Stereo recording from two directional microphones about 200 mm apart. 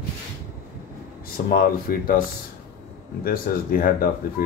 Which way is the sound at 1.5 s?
45° left (ahead or behind).